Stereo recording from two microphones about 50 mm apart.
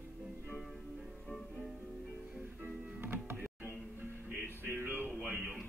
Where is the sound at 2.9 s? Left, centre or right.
Right.